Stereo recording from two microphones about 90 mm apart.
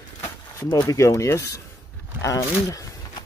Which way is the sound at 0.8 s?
35° left (ahead or behind).